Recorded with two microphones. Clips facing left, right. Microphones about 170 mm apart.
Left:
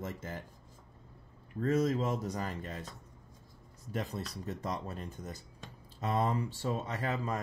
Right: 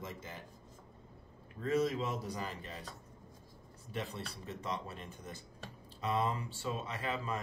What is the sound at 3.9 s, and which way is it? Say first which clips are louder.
Speech: left 4 dB; 40° left (ahead or behind).